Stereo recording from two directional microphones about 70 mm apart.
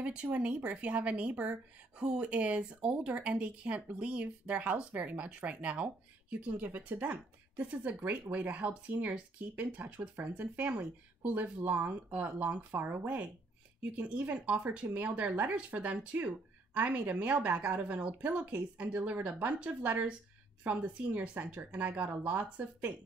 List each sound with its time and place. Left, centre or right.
0.0 s speech: centre